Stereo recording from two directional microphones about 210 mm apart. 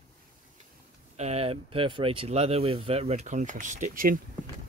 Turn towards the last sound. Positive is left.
turn(degrees=-40)  # may be behind; listen again after turning